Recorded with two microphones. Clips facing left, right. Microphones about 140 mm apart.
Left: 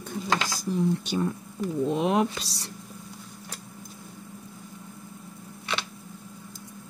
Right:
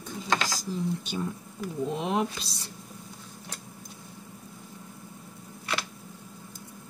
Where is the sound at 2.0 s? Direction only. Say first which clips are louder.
Left 4 dB; 75° left (ahead or behind).